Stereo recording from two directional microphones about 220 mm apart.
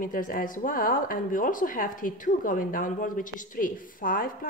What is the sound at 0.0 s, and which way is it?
A woman's voice, 40° left (ahead or behind).